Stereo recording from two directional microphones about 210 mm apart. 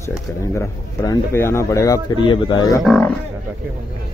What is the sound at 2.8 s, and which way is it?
Speech, 5° left (ahead or behind).